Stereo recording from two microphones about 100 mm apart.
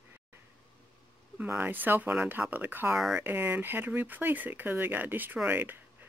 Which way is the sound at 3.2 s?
20° right (ahead or behind).